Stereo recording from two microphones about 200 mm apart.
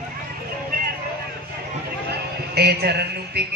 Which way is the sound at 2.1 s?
55° right (ahead or behind).